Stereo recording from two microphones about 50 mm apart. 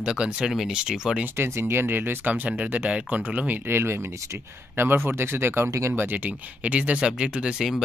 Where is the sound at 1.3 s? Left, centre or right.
Right.